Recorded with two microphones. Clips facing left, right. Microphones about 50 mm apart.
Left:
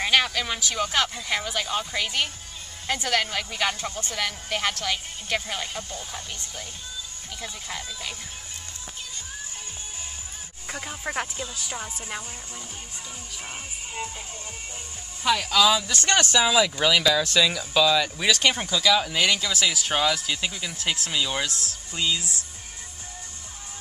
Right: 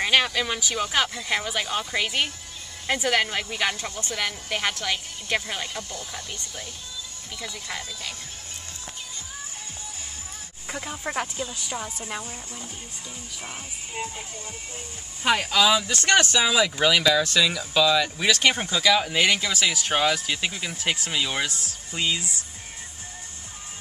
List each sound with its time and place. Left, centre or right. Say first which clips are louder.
0.0 s speech: right 1 dB; centre
5.8 s speech: even; left
10.7 s speech: right 1 dB; centre
15.2 s speech: right 1 dB; right
15.5 s speech: left 2 dB; centre
19.7 s speech: right 1 dB; centre
20.0 s speech: right 1 dB; centre